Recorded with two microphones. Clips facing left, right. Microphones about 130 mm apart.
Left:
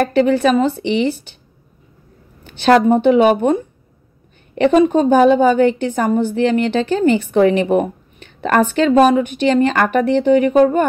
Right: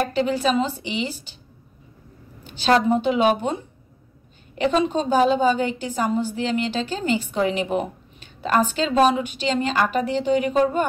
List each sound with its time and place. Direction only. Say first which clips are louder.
0.1 s a woman's voice: left 8 dB; 60° left (ahead or behind)
2.4 s a woman's voice: left 7 dB; 60° left (ahead or behind)